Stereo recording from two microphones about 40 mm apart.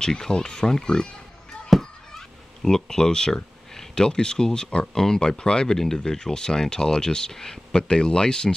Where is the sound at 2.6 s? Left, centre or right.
Centre.